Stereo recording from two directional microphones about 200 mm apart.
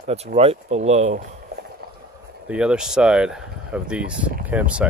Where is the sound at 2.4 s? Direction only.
5° right (ahead or behind).